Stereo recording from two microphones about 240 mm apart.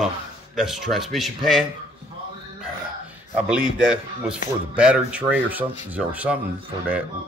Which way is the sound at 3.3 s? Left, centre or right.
Centre.